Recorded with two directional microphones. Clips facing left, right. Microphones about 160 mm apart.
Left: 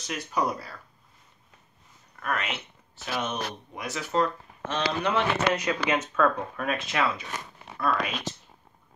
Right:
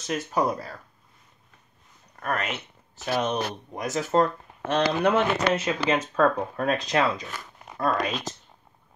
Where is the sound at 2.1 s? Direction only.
40° right (ahead or behind).